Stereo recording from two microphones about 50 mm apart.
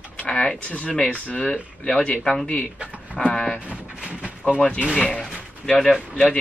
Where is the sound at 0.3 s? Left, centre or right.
Centre.